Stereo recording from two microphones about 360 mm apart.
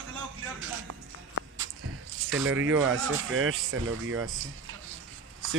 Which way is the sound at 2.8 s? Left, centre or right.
Right.